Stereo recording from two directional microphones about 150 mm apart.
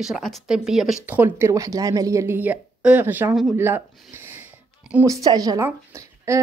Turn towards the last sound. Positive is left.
turn(degrees=-20)  # may be behind; listen again after turning